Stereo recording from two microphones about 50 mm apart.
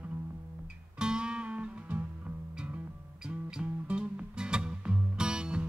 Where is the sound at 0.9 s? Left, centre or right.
Centre.